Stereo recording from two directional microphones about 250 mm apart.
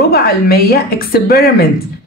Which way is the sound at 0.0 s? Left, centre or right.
Left.